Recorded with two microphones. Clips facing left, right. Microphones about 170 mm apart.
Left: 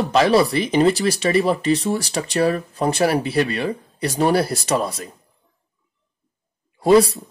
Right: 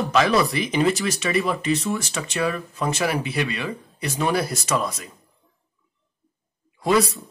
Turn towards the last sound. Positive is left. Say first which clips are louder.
# left 6 dB
turn(degrees=35)  # may be behind; listen again after turning